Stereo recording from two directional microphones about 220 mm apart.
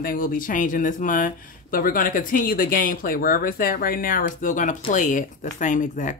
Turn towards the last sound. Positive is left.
turn(degrees=35)  # may be behind; listen again after turning